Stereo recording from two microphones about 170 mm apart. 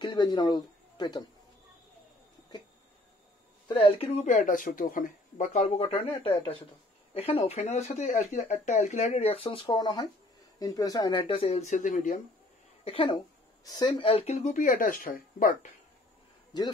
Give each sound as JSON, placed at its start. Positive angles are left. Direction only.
{"t": 0.0, "sound": "speech", "side_deg": 25}
{"t": 3.6, "sound": "speech", "side_deg": 35}
{"t": 4.3, "sound": "speech", "side_deg": 50}
{"t": 12.8, "sound": "speech", "side_deg": 30}